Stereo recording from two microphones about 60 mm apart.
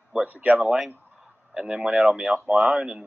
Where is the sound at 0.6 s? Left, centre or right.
Centre.